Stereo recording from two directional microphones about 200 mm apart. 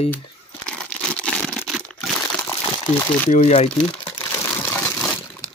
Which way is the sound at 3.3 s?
35° left (ahead or behind).